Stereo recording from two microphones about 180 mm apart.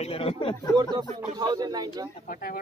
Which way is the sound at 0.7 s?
25° right (ahead or behind).